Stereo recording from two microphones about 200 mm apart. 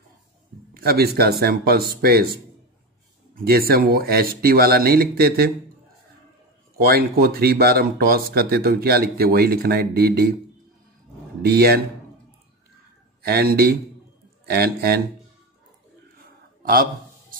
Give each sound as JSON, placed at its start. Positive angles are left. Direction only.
{"t": 0.7, "sound": "a man's voice", "side_deg": -50}
{"t": 6.8, "sound": "speech", "side_deg": -50}
{"t": 11.4, "sound": "speech", "side_deg": -50}
{"t": 13.2, "sound": "speech", "side_deg": -50}